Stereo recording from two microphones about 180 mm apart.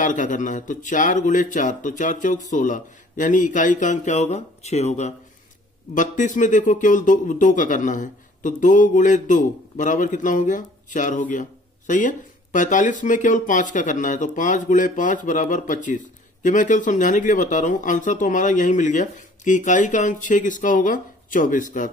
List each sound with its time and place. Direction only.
0.0 s speech: 45° left (ahead or behind)